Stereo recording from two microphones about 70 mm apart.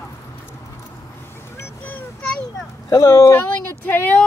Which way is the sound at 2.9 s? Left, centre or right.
Left.